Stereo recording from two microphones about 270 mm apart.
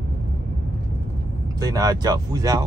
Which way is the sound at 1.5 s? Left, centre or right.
Centre.